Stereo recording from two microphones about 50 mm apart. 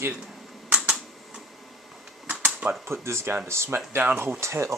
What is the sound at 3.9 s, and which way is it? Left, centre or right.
Speech, right.